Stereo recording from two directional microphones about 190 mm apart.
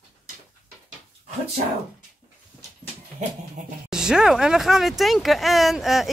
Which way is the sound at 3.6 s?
40° right (ahead or behind).